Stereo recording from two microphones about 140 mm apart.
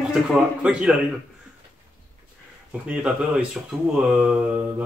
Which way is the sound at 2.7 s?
10° right (ahead or behind).